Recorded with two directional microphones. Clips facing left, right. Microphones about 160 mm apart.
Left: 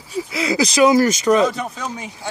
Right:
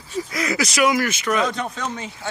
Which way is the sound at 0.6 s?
30° left (ahead or behind).